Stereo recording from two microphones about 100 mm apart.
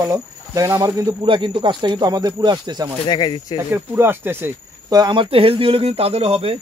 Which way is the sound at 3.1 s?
50° left (ahead or behind).